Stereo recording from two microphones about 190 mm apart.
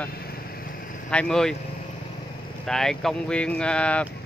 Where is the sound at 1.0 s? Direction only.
5° left (ahead or behind).